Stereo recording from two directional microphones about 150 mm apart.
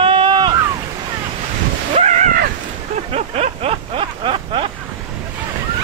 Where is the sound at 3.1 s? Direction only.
45° right (ahead or behind).